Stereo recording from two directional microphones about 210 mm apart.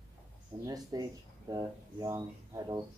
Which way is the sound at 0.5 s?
20° right (ahead or behind).